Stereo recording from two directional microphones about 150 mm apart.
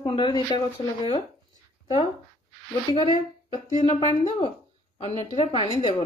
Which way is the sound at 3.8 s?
40° left (ahead or behind).